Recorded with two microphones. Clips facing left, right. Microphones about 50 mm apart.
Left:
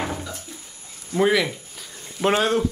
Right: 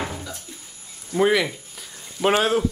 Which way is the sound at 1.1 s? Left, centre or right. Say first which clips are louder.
Even; centre.